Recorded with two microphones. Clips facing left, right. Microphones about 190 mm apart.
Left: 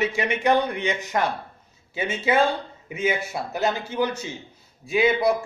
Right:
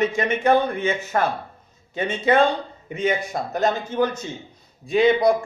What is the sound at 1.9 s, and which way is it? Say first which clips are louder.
A man's voice: right 3 dB; 5° left (ahead or behind).